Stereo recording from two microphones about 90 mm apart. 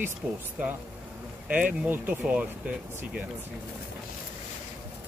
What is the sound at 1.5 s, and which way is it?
Speech, 15° right (ahead or behind).